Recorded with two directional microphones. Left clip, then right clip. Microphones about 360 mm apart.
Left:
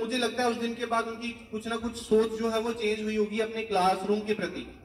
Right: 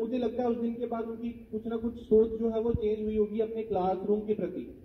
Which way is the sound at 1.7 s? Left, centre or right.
Left.